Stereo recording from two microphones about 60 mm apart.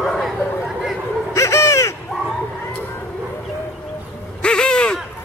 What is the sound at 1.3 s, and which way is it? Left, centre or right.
Owl, left.